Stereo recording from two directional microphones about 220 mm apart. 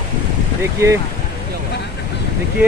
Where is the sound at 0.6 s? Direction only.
15° right (ahead or behind).